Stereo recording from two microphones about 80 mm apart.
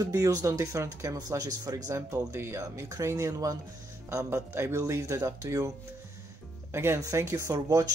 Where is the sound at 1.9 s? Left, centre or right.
Right.